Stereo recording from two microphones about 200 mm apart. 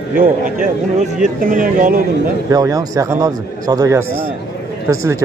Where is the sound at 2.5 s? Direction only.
15° right (ahead or behind).